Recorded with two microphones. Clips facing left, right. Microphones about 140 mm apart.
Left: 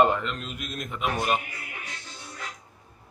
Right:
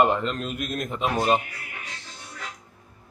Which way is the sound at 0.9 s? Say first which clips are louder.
Right 4 dB; 30° right (ahead or behind).